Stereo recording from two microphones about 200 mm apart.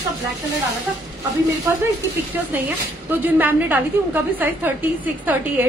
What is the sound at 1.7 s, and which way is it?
Speech, 15° right (ahead or behind).